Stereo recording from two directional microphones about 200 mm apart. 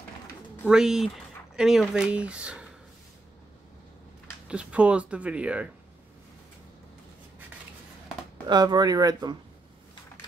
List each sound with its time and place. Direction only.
0.7 s speech: 5° right (ahead or behind)
4.5 s speech: 5° right (ahead or behind)
8.5 s speech: 20° right (ahead or behind)